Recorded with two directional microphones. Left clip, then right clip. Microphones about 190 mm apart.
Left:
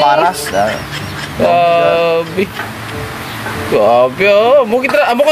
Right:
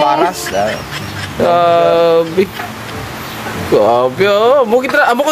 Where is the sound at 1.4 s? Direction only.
30° right (ahead or behind).